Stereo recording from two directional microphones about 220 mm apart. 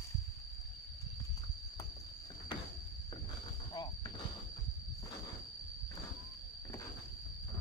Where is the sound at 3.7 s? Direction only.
20° left (ahead or behind).